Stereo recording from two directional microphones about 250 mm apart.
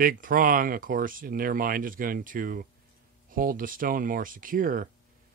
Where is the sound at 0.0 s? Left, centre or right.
Right.